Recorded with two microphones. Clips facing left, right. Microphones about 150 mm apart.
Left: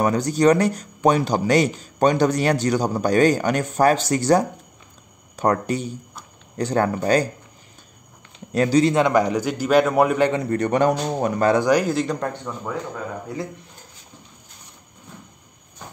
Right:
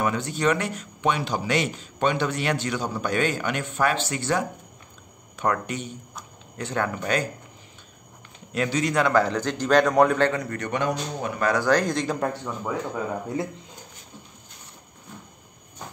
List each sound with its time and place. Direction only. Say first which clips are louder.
0.0 s speech: left 7 dB; 40° left (ahead or behind)
8.5 s speech: left 8 dB; 35° left (ahead or behind)
8.9 s a man's voice: left 3 dB; 20° left (ahead or behind)
10.3 s speech: left 7 dB; 30° left (ahead or behind)
11.5 s speech: left 4 dB; 15° left (ahead or behind); by 12.7 s 5° right (ahead or behind)